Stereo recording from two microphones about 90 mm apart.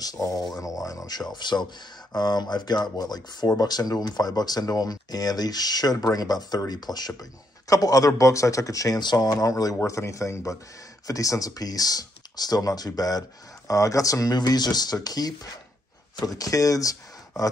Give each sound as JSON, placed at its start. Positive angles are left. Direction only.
{"t": 0.0, "sound": "speech", "side_deg": 40}
{"t": 1.3, "sound": "speech", "side_deg": 55}
{"t": 16.3, "sound": "speech", "side_deg": 40}